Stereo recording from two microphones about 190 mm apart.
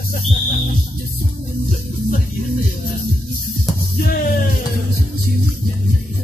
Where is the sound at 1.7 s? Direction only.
50° left (ahead or behind).